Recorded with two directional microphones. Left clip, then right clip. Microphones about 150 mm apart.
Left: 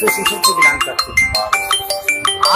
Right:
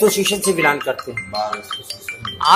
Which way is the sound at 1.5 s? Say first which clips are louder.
Left 11 dB; 55° left (ahead or behind).